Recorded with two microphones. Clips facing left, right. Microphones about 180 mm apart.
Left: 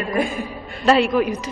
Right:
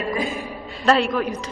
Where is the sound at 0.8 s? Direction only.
5° left (ahead or behind).